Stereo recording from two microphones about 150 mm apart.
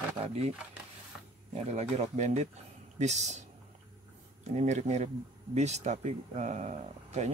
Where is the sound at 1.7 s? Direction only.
45° right (ahead or behind).